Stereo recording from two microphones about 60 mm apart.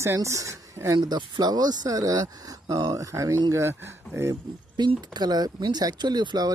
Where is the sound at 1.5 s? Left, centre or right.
Right.